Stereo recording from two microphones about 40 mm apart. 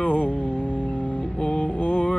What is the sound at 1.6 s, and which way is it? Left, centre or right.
Mantra, left.